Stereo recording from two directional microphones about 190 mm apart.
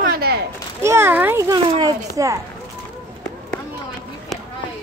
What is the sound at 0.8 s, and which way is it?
A child's voice, 15° right (ahead or behind).